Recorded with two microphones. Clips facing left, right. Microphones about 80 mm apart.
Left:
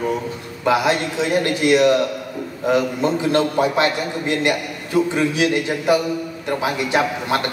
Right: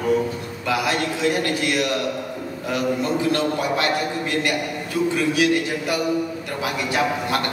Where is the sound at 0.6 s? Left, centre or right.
Left.